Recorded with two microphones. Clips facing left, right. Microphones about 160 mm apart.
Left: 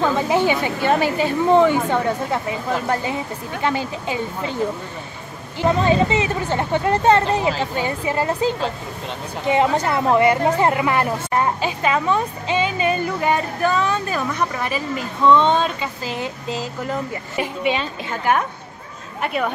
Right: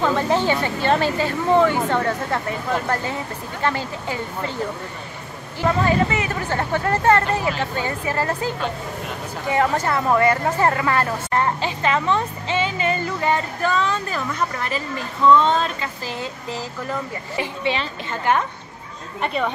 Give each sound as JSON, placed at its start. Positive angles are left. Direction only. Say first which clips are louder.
{"t": 0.0, "sound": "speech", "louder": "left 1 dB", "side_deg": 10}
{"t": 5.6, "sound": "speech", "louder": "left 2 dB", "side_deg": 20}
{"t": 15.8, "sound": "speech", "louder": "left 3 dB", "side_deg": 20}